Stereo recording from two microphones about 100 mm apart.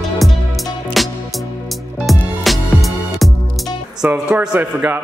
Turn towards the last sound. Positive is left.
turn(degrees=-10)  # may be behind; listen again after turning